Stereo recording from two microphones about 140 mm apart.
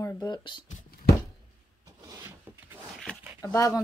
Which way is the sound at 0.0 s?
25° left (ahead or behind).